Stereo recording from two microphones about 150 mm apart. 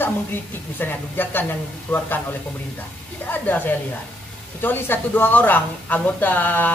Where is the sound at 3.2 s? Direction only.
10° left (ahead or behind).